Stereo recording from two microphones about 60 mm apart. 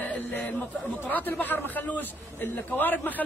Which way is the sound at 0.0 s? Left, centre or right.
Left.